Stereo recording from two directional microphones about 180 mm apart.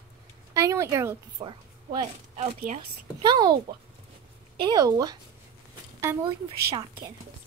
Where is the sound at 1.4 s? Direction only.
25° right (ahead or behind).